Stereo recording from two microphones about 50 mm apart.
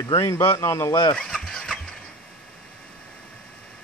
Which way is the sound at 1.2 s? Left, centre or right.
Centre.